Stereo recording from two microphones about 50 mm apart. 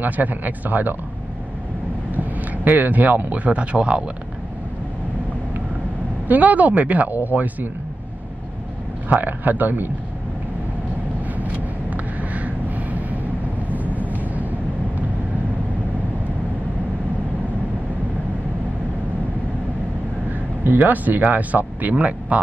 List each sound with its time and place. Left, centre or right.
0.0 s speech: right
2.1 s speech: right
6.2 s speech: right
9.1 s speech: right
11.9 s a sound: right
13.8 s vehicle: right
20.6 s speech: right